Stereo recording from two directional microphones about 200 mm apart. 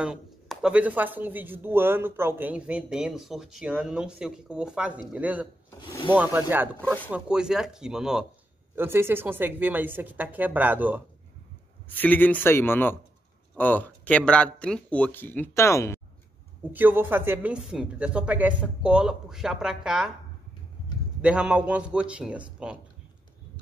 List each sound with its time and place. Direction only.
0.0 s a woman's voice: 5° right (ahead or behind)
5.8 s speech: 25° left (ahead or behind)
6.1 s a woman's voice: 10° right (ahead or behind)
11.9 s speech: 10° left (ahead or behind)
16.7 s speech: 10° right (ahead or behind)
21.2 s speech: 5° right (ahead or behind)